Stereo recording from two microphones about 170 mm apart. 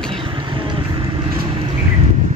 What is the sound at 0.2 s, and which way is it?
Vehicle, 30° right (ahead or behind).